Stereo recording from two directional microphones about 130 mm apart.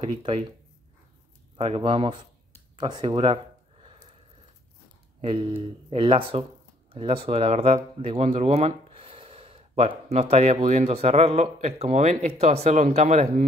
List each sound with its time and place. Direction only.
0.0 s speech: 45° right (ahead or behind)
1.6 s speech: 45° right (ahead or behind)
2.7 s a sound: 35° right (ahead or behind)
5.2 s speech: 40° right (ahead or behind); by 13.3 s 60° right (ahead or behind)